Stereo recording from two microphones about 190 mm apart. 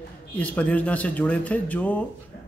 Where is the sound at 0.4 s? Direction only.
10° left (ahead or behind).